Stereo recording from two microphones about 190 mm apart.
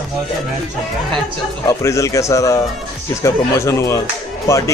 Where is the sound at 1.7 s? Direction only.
15° left (ahead or behind).